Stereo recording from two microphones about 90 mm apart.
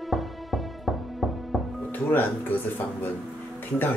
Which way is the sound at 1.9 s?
20° left (ahead or behind).